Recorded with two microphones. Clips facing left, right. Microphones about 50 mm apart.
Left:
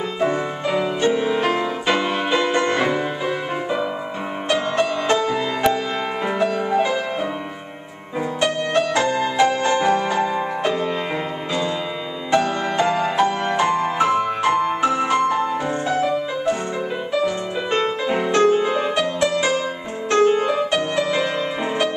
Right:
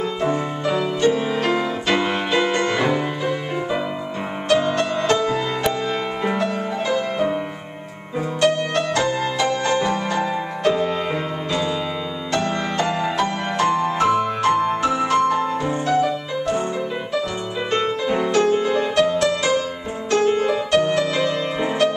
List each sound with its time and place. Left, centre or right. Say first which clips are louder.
0.2 s music: left 3 dB; centre
2.0 s music: even; centre
2.5 s music: even; centre
4.5 s music: right 1 dB; centre
8.4 s music: right 1 dB; centre
12.7 s music: left 4 dB; centre
17.7 s music: even; centre; by 18.9 s left
18.9 s music: right 2 dB; centre